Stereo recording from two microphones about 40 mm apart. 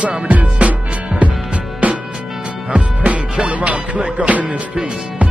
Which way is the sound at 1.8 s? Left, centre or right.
Right.